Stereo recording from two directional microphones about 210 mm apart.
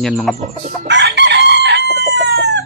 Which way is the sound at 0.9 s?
55° right (ahead or behind).